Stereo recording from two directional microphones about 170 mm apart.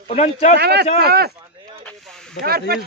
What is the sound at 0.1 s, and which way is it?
Speech, 40° left (ahead or behind).